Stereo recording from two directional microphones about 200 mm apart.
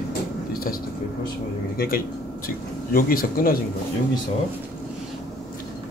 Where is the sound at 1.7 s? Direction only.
45° left (ahead or behind).